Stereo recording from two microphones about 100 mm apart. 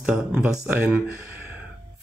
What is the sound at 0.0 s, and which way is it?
Speech, 10° right (ahead or behind).